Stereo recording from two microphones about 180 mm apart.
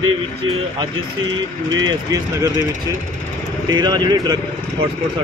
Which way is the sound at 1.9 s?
20° right (ahead or behind).